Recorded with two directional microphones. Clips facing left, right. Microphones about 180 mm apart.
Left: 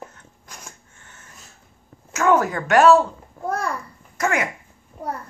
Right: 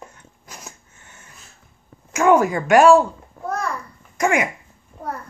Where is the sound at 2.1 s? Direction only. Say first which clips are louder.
Right 3 dB; 15° right (ahead or behind).